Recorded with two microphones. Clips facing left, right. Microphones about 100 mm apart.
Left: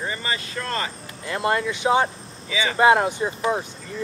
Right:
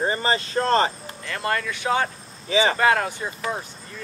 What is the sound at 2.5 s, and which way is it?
Speech, 45° right (ahead or behind).